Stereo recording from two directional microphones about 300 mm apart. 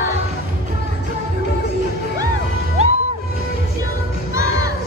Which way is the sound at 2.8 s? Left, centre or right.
Right.